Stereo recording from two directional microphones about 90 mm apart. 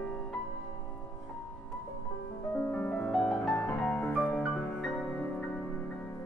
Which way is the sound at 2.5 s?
15° left (ahead or behind).